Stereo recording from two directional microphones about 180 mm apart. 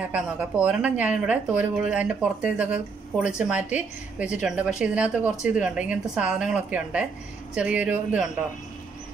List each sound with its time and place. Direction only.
0.0 s speech: 10° right (ahead or behind)